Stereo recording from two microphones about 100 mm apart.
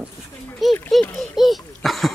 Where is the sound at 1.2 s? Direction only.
Centre (ahead or behind).